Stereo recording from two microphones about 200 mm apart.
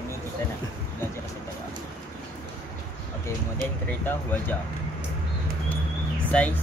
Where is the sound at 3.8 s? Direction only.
10° left (ahead or behind).